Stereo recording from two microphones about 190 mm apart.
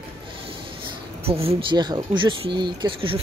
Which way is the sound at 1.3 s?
30° right (ahead or behind).